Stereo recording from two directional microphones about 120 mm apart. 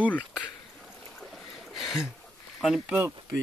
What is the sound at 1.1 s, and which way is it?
Boat, centre (ahead or behind).